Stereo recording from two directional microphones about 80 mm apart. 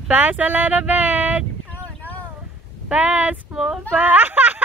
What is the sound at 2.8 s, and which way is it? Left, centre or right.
Speech, centre.